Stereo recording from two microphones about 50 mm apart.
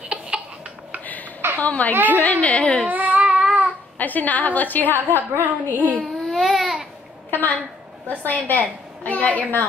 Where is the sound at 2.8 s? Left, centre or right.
Right.